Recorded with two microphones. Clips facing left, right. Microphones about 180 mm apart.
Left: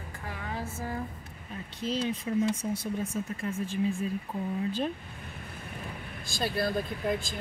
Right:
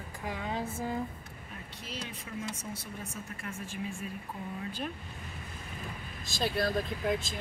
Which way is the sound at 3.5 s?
30° left (ahead or behind).